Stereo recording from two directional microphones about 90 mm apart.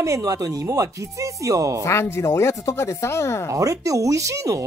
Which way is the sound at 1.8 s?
30° left (ahead or behind).